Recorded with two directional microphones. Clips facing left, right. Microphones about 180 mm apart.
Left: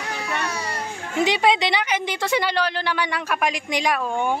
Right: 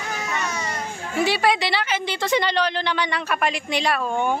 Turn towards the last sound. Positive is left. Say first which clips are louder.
# even
turn(degrees=10)  # may be behind; listen again after turning